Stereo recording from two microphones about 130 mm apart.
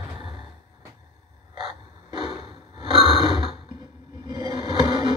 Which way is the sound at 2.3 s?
45° right (ahead or behind).